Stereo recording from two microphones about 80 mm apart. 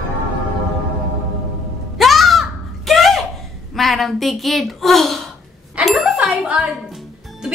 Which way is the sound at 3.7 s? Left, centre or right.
Centre.